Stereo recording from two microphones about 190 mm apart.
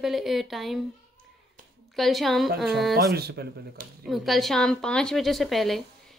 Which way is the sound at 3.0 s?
55° right (ahead or behind).